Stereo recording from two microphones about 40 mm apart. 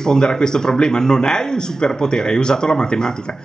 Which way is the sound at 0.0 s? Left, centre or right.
Centre.